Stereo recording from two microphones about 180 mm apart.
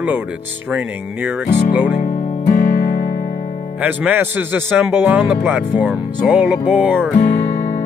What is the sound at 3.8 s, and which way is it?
Speech, 10° right (ahead or behind).